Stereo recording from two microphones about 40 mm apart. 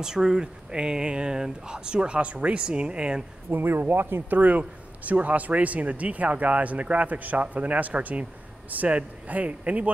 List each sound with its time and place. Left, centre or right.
0.0 s speech: centre
3.4 s speech: right
4.4 s speech: right